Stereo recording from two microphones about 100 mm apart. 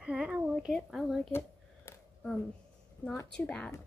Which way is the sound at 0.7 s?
Centre (ahead or behind).